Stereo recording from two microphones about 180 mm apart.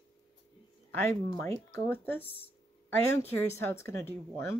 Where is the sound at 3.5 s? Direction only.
15° left (ahead or behind).